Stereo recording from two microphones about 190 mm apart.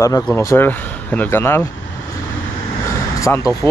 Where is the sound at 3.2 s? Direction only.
15° left (ahead or behind).